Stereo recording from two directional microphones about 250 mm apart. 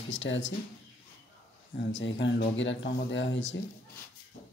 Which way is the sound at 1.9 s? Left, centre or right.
Left.